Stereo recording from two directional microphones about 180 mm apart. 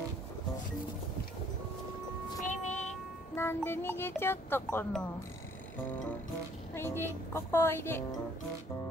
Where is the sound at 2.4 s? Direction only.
40° left (ahead or behind).